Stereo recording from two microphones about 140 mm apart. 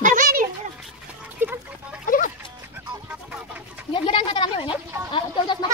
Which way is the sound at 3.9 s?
40° left (ahead or behind).